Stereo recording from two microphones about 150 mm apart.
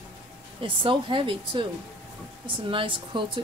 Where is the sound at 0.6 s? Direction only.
35° right (ahead or behind).